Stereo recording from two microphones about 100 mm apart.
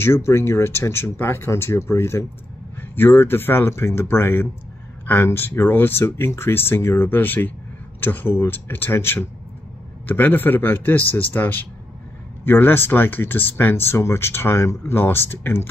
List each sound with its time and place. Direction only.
0.0 s speech: 25° left (ahead or behind)